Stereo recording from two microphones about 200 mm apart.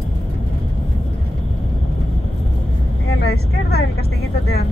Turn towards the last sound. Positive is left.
turn(degrees=55)  # may be behind; listen again after turning